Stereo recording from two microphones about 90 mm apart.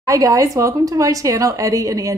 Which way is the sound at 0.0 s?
40° right (ahead or behind).